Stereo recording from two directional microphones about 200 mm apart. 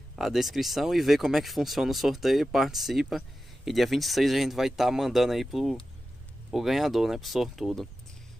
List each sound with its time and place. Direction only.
0.1 s speech: centre (ahead or behind)